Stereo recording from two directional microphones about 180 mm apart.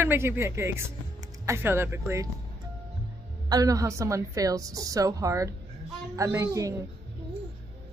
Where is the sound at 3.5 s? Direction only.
20° right (ahead or behind).